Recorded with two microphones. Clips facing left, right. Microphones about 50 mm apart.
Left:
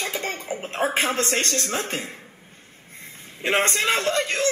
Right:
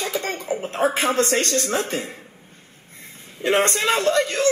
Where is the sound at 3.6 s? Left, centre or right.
Right.